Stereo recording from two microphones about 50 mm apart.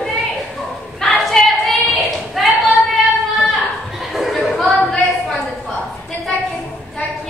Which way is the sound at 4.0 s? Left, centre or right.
Centre.